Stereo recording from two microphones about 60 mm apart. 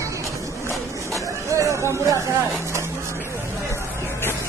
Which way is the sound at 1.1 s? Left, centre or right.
Right.